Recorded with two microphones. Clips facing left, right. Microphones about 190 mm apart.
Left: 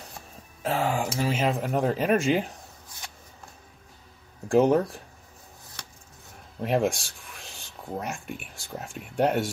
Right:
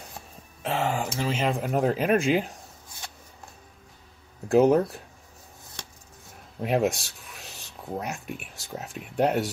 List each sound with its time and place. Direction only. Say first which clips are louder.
0.6 s speech: left 1 dB; 5° left (ahead or behind)
4.5 s speech: right 1 dB; centre (ahead or behind)
6.6 s speech: even; 5° right (ahead or behind)